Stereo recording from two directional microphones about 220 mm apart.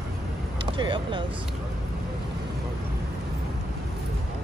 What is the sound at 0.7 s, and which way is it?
Speech, 20° right (ahead or behind).